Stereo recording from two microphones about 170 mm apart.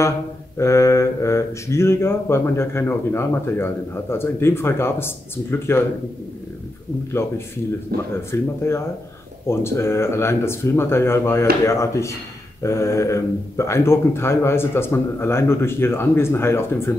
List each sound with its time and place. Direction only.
0.6 s speech: 15° left (ahead or behind)
7.1 s speech: 15° left (ahead or behind)
7.9 s speech: 65° right (ahead or behind)
8.3 s speech: 15° left (ahead or behind)